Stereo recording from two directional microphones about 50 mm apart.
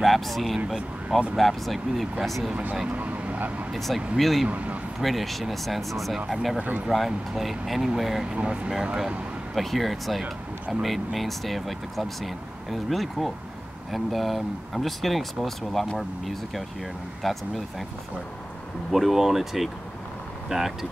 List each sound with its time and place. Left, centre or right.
0.0 s speech: centre
2.5 s speech: right
2.9 s vehicle: right
3.7 s speech: centre
4.5 s speech: right
5.0 s speech: centre
6.1 s speech: centre
9.6 s speech: centre
18.9 s speech: centre